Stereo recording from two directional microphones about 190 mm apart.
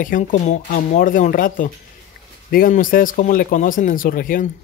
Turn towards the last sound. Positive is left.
turn(degrees=45)  # may be behind; listen again after turning